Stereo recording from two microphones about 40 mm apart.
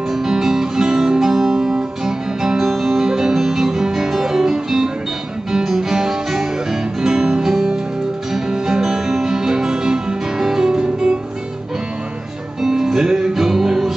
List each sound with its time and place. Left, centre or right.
0.1 s guitar: centre
5.5 s music: centre
8.8 s music: centre
12.6 s music: centre